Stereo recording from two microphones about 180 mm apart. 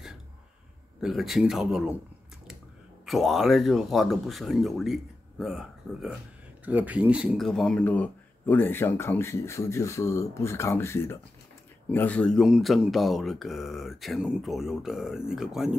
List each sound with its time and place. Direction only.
1.0 s speech: centre (ahead or behind)
3.1 s speech: centre (ahead or behind)